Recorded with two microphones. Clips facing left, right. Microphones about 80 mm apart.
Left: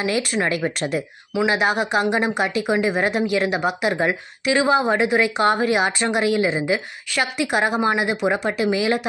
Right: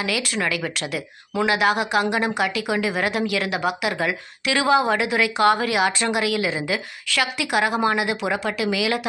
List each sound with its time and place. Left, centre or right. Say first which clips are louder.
0.0 s speech: left 3 dB; left